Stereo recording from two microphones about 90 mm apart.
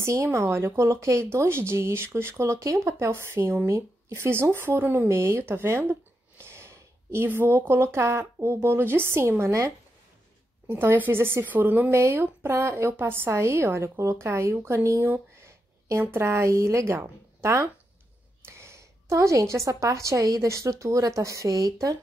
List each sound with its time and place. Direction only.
0.0 s speech: 30° right (ahead or behind)
10.7 s a woman's voice: 25° right (ahead or behind)